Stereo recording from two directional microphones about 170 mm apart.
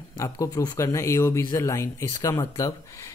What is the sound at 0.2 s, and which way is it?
A man's voice, 20° left (ahead or behind).